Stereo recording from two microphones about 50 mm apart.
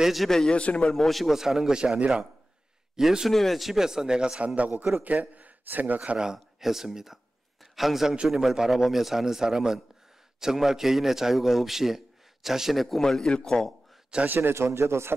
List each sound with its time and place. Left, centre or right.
0.0 s a man's voice: centre
0.3 s a man's voice: centre
0.6 s speech: left
0.9 s a man's voice: centre
1.3 s a man's voice: centre
3.0 s a man's voice: centre
3.3 s a man's voice: centre
4.6 s a man's voice: right
6.1 s a man's voice: centre
14.2 s a man's voice: right
14.5 s a man's voice: right